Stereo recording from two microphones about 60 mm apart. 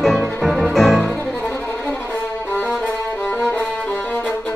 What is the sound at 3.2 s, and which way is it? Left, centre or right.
Music, centre.